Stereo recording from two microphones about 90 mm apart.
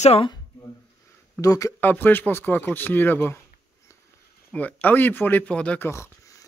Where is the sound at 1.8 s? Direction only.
20° left (ahead or behind).